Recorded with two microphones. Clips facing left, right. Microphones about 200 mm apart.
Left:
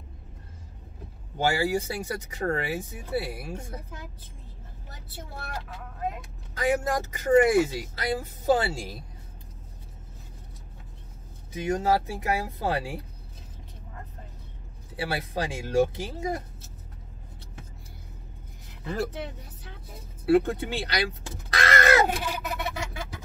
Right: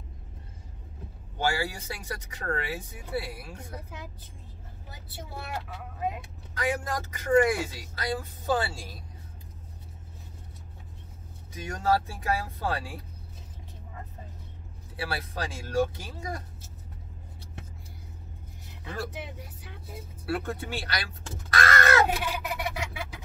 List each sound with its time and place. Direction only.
1.4 s speech: 25° left (ahead or behind)
4.8 s speech: 5° right (ahead or behind)
6.5 s speech: 25° left (ahead or behind)
11.5 s speech: 20° left (ahead or behind)
15.0 s speech: 20° left (ahead or behind)
20.2 s speech: 20° left (ahead or behind)
22.1 s a sound: 5° right (ahead or behind)